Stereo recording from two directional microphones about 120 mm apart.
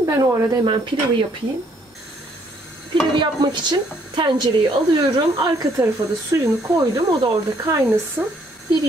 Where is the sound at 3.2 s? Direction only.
40° right (ahead or behind).